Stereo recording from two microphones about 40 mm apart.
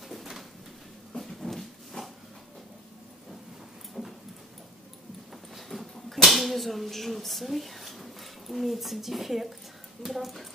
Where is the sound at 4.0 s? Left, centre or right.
Centre.